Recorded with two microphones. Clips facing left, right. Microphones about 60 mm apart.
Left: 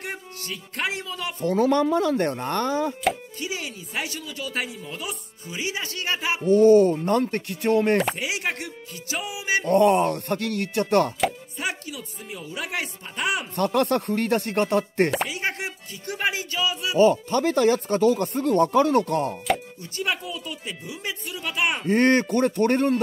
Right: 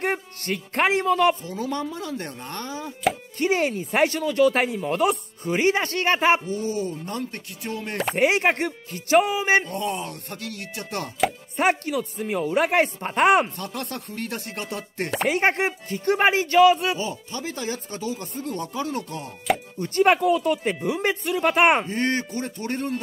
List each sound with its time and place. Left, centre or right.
0.0 s speech: right
1.4 s speech: left
3.3 s speech: right
6.5 s speech: left
8.2 s speech: right
9.7 s speech: left
11.5 s speech: right
13.6 s speech: left
15.2 s speech: right
16.9 s speech: left
19.8 s speech: right
21.8 s speech: left